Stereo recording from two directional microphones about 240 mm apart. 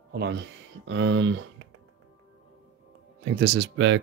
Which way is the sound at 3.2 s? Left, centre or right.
Right.